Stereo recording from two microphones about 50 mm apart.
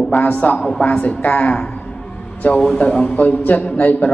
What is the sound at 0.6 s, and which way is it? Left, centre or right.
A woman's voice, centre.